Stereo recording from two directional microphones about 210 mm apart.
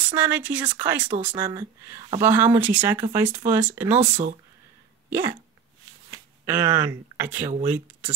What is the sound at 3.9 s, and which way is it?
Speech, 35° right (ahead or behind).